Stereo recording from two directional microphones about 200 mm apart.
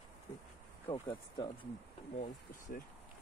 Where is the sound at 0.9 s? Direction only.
25° left (ahead or behind).